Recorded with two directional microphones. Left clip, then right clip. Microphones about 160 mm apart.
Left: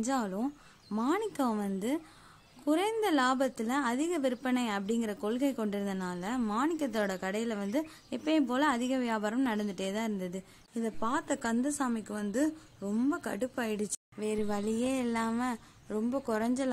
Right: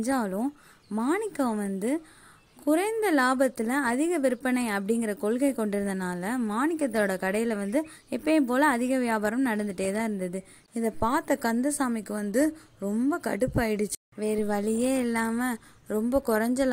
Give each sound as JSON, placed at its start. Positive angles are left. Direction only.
{"t": 0.0, "sound": "speech", "side_deg": -30}